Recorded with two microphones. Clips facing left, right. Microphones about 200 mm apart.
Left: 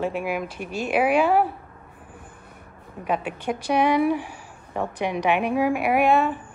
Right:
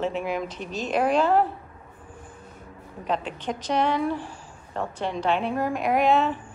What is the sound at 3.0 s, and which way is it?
Speech, 10° left (ahead or behind).